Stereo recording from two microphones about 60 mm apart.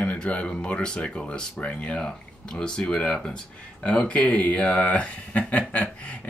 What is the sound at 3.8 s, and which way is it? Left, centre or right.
Speech, centre.